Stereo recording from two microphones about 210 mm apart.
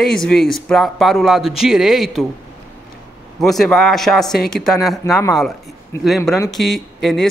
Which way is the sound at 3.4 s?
Centre (ahead or behind).